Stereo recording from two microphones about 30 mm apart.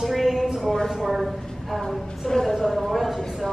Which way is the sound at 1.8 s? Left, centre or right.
Centre.